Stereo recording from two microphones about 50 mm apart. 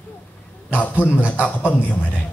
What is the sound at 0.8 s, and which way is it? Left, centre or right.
A man's voice, left.